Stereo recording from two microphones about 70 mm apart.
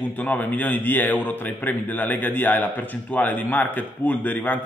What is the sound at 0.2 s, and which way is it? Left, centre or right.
A man's voice, left.